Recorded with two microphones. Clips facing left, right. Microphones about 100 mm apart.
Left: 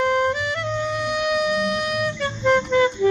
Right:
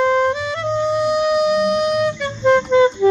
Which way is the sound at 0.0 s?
25° right (ahead or behind).